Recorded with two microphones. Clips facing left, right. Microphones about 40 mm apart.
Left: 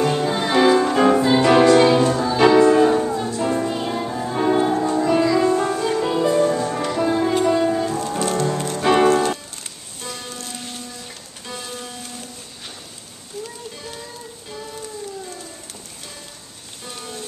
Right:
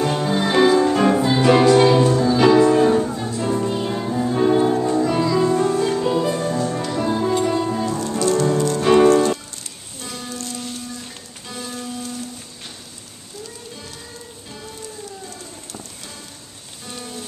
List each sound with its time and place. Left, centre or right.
0.0 s music: centre
7.2 s music: left
8.8 s music: left
11.4 s music: centre